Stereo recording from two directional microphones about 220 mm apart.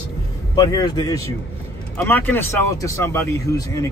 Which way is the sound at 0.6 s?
15° left (ahead or behind).